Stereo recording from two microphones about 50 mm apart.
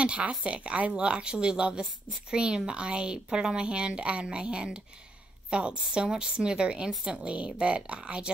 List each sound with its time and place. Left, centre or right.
0.0 s a woman's voice: right